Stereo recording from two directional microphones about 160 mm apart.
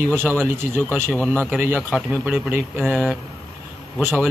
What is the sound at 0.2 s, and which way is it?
A man's voice, 5° left (ahead or behind).